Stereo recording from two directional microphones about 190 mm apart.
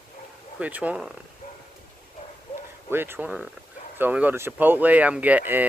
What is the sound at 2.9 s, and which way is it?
Speech, 10° right (ahead or behind).